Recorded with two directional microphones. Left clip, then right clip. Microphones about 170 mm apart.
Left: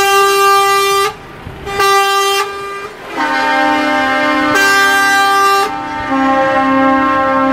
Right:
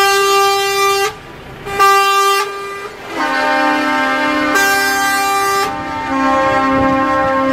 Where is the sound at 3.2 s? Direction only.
55° left (ahead or behind).